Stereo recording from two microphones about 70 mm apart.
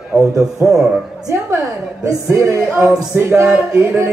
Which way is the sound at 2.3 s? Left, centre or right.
Right.